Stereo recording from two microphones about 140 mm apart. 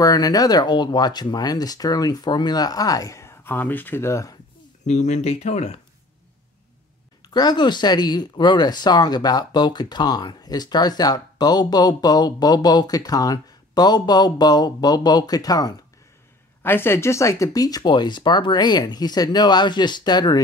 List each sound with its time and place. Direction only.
0.0 s speech: 25° left (ahead or behind)
4.8 s speech: 55° left (ahead or behind)
7.3 s speech: 30° left (ahead or behind)
16.6 s speech: 15° left (ahead or behind)